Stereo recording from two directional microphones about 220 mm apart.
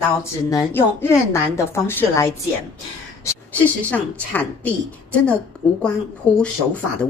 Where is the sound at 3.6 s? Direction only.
5° left (ahead or behind).